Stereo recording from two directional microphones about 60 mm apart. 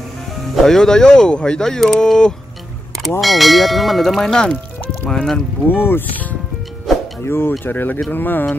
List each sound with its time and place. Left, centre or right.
0.6 s speech: centre
3.2 s speech: centre
5.7 s speech: left
7.2 s speech: left